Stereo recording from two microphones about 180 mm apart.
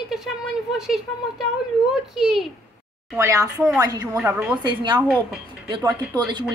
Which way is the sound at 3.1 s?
15° right (ahead or behind).